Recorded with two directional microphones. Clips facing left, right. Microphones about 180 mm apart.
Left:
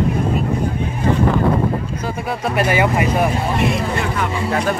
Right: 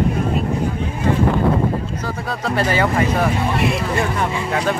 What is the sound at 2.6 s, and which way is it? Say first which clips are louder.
Speech: left 1 dB; 10° left (ahead or behind).